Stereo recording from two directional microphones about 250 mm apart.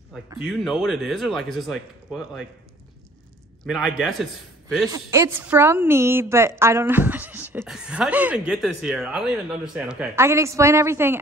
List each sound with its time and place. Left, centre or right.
0.4 s speech: centre
3.6 s speech: centre
4.8 s a woman's voice: centre